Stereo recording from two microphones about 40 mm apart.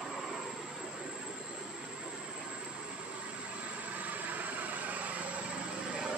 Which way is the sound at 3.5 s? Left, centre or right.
Right.